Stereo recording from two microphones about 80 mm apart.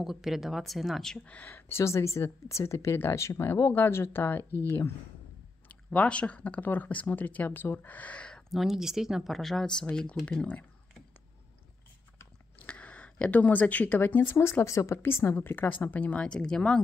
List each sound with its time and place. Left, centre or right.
0.0 s speech: centre
1.3 s speech: centre
1.7 s speech: left
5.9 s speech: centre
8.5 s speech: centre
12.5 s speech: centre